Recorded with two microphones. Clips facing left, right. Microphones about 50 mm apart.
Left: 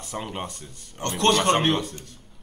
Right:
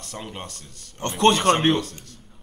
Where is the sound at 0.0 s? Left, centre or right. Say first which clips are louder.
Left 3 dB; centre.